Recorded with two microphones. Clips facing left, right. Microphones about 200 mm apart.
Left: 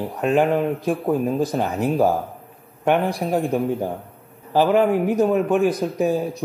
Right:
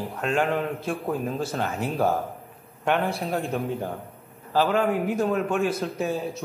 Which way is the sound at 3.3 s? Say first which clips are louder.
Left 6 dB; 15° left (ahead or behind).